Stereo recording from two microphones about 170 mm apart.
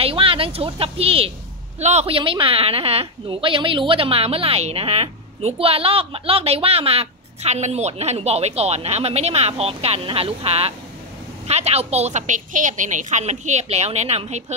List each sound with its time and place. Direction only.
0.0 s a woman's voice: 30° right (ahead or behind)